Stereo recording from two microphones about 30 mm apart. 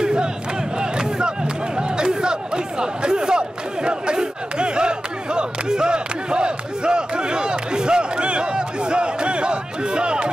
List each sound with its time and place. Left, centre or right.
0.0 s crowd: right
0.7 s battle cry: right
1.8 s chatter: right